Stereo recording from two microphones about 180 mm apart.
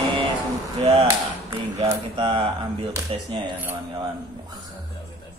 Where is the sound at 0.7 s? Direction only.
35° right (ahead or behind).